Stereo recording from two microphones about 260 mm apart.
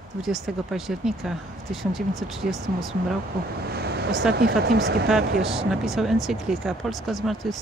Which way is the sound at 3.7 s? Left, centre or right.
Right.